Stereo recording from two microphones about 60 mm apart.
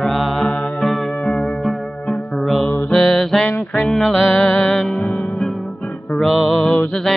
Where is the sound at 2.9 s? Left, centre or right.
Centre.